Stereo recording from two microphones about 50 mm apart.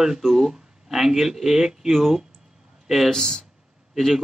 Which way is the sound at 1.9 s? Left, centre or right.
Centre.